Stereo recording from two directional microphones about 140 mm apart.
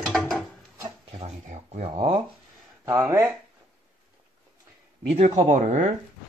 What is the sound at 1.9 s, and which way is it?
Speech, 40° right (ahead or behind).